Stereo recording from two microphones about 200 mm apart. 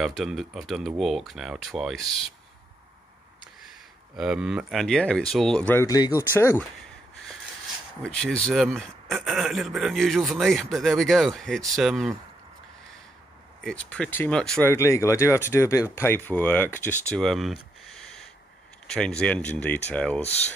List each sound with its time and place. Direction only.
0.2 s a man's voice: centre (ahead or behind)
4.2 s a man's voice: 5° right (ahead or behind); by 6.6 s 10° left (ahead or behind)
8.0 s a man's voice: 5° left (ahead or behind)
13.7 s speech: 5° left (ahead or behind)
18.9 s a man's voice: 5° left (ahead or behind)
20.2 s speech: 30° left (ahead or behind)